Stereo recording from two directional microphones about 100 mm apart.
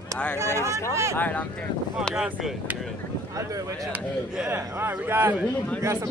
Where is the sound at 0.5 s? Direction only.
30° left (ahead or behind).